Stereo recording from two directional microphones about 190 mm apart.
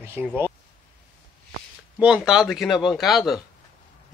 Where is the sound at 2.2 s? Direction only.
Centre (ahead or behind).